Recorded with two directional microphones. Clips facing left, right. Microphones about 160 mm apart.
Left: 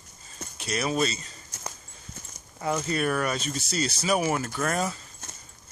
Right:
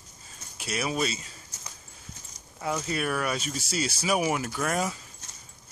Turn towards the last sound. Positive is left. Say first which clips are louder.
# left 1 dB
turn(degrees=-10)  # may be behind; listen again after turning